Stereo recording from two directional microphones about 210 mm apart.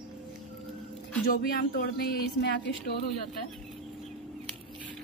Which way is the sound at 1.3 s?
45° left (ahead or behind).